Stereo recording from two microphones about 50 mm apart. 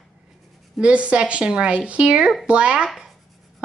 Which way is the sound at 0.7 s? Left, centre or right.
Right.